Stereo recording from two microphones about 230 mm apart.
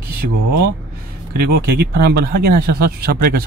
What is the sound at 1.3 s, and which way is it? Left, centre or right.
Speech, right.